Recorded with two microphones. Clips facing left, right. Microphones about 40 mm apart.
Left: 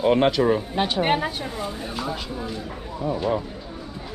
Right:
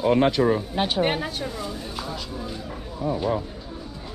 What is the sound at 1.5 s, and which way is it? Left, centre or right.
Speech, left.